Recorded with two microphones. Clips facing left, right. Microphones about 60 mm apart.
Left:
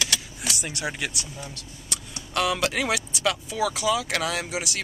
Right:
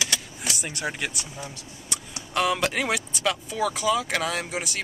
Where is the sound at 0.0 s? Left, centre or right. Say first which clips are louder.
Even; centre.